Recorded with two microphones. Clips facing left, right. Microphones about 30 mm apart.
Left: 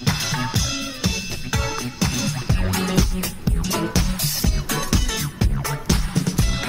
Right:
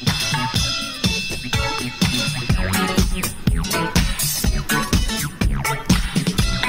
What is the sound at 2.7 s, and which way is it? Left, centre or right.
Music, right.